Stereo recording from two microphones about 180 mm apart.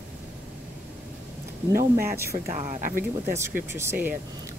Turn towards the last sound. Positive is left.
turn(degrees=-10)  # may be behind; listen again after turning